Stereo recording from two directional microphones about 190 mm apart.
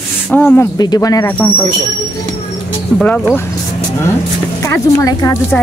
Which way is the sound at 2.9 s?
5° left (ahead or behind).